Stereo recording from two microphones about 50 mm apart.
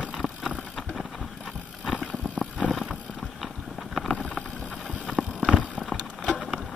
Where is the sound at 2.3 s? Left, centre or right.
Left.